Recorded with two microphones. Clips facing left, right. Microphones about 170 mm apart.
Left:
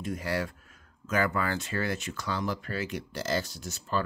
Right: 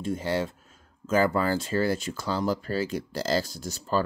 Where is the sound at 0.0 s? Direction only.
25° right (ahead or behind).